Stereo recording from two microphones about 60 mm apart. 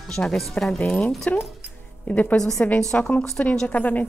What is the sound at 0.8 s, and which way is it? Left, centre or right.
A woman's voice, left.